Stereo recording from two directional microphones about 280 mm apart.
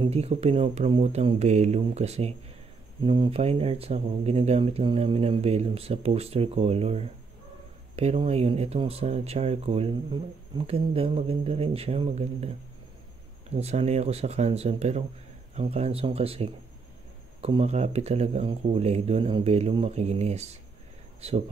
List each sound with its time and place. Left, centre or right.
0.0 s speech: right
13.6 s speech: right